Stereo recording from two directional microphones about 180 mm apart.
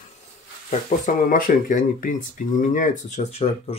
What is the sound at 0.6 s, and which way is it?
Speech, 45° left (ahead or behind).